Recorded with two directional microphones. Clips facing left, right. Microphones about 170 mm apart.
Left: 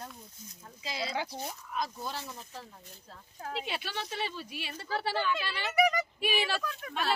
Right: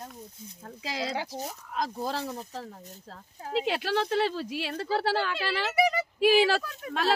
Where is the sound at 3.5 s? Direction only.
90° right.